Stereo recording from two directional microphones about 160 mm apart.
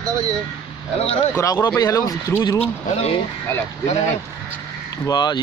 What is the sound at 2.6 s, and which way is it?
Speech, 40° left (ahead or behind).